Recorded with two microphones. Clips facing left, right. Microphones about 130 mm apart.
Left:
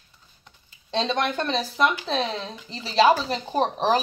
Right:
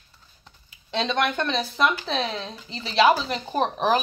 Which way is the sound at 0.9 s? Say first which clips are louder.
Even; 30° left (ahead or behind).